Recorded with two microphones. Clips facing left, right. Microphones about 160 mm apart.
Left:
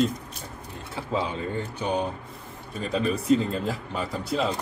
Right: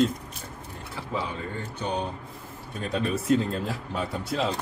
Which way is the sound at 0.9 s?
20° left (ahead or behind).